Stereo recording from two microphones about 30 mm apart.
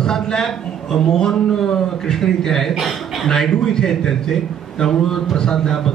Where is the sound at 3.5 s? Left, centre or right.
Centre.